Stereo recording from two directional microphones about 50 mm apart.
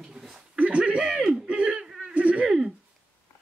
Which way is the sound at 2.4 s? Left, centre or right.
Centre.